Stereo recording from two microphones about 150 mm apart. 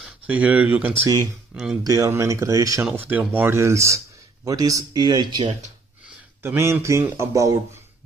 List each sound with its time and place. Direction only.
0.0 s speech: 10° right (ahead or behind)
1.0 s speech: 25° right (ahead or behind)
1.5 s speech: 5° right (ahead or behind)
1.8 s speech: 20° right (ahead or behind)
2.9 s a man's voice: 10° right (ahead or behind); by 5.5 s 30° right (ahead or behind)
6.4 s a man's voice: 15° right (ahead or behind)